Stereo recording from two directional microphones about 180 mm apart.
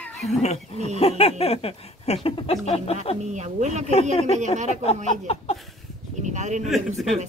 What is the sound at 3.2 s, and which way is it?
Speech, 40° right (ahead or behind).